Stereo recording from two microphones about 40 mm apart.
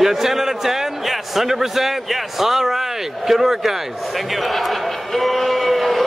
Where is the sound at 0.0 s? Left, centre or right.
Centre.